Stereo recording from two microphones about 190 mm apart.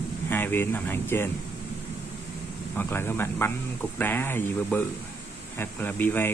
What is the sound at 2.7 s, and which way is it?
Speech, 10° left (ahead or behind).